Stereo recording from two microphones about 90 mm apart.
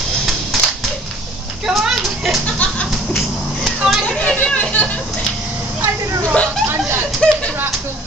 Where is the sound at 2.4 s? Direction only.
15° left (ahead or behind).